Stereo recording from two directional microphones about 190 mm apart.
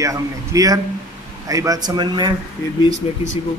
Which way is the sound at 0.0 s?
15° right (ahead or behind).